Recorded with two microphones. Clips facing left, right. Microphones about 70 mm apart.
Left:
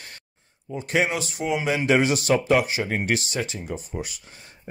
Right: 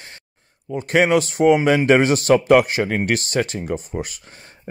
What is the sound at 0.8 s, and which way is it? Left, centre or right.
Speech, right.